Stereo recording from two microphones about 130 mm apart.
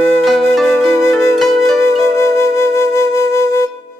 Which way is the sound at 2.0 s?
20° left (ahead or behind).